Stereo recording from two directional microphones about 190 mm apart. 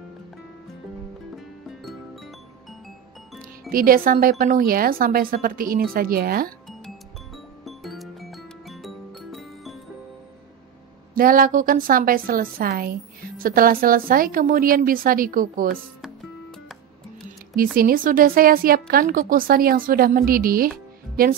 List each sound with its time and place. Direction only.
1.3 s music: centre (ahead or behind)
3.7 s a woman's voice: 50° right (ahead or behind)
7.6 s music: centre (ahead or behind)
11.1 s a woman's voice: 45° right (ahead or behind)
17.7 s a woman's voice: 50° right (ahead or behind)